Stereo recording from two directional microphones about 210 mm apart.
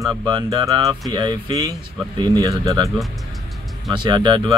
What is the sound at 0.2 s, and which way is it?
A man's voice, 20° right (ahead or behind).